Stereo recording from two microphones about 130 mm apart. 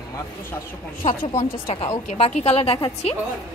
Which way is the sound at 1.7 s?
45° left (ahead or behind).